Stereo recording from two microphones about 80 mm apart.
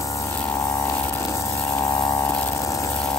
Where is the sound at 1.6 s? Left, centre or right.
Left.